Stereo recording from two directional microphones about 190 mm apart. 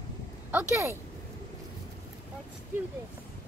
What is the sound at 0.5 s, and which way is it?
Speech, 10° right (ahead or behind).